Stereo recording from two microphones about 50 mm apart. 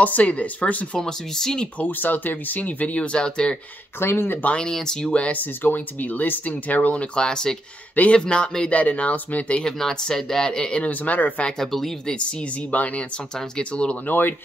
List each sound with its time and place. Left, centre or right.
0.0 s speech: left
1.0 s speech: centre
1.8 s speech: left; by 3.5 s centre
4.0 s speech: left
4.6 s speech: centre
5.1 s speech: left
5.4 s speech: left
7.2 s speech: centre
7.9 s speech: left
8.2 s speech: centre
9.7 s speech: centre; by 11.4 s left
11.4 s speech: centre
12.3 s speech: left
14.0 s speech: left